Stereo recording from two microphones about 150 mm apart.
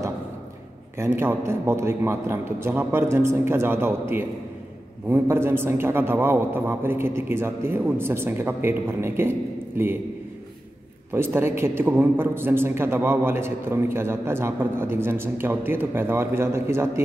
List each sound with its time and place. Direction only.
0.9 s a man's voice: 15° right (ahead or behind)
11.1 s a man's voice: 15° right (ahead or behind)